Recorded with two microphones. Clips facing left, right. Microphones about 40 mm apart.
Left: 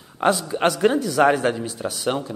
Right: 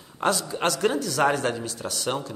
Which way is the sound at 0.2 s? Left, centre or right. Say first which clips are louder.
Left 5 dB; centre.